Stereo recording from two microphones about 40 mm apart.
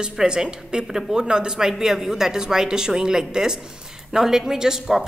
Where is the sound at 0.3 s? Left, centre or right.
Centre.